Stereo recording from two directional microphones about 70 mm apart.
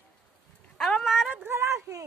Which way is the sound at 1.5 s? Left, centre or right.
Right.